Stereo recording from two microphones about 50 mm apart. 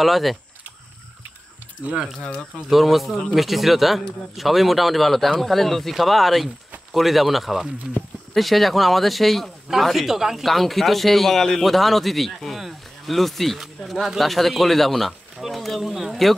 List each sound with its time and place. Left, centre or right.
0.0 s speech: centre
2.1 s speech: centre
2.7 s speech: centre